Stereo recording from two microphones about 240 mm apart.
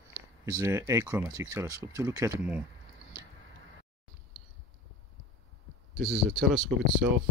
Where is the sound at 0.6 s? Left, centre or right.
Centre.